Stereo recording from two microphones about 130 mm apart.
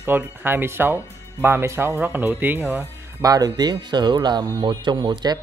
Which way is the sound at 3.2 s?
30° right (ahead or behind).